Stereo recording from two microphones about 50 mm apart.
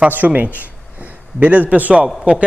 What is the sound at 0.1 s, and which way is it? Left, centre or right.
A man's voice, right.